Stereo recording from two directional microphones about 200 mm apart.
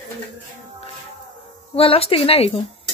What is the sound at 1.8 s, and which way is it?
Speech, 30° left (ahead or behind).